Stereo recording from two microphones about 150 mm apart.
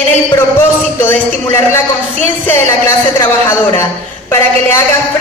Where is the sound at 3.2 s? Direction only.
15° left (ahead or behind).